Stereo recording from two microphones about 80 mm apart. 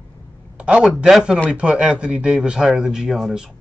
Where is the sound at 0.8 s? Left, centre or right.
Centre.